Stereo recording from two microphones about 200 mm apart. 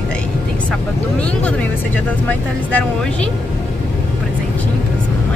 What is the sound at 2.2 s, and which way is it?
Speech, 10° left (ahead or behind).